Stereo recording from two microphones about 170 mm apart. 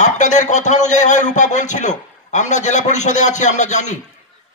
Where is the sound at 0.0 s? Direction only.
45° left (ahead or behind).